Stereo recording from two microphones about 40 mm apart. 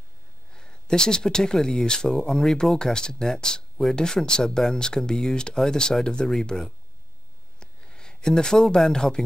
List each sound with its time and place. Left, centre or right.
0.5 s speech: left